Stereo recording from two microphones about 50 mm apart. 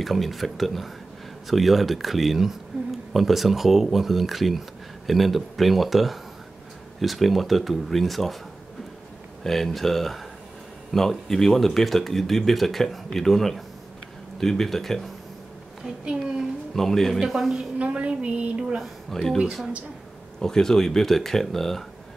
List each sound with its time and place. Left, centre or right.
0.0 s speech: centre
9.4 s speech: centre
15.8 s a woman's voice: centre
16.7 s speech: centre
17.7 s a sound: right
18.8 s speech: centre
20.3 s speech: centre